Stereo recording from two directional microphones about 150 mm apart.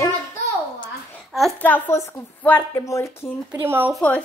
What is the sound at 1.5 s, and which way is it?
A woman's voice, 10° left (ahead or behind).